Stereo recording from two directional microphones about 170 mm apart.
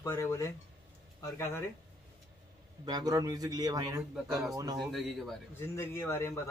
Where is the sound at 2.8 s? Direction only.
25° right (ahead or behind).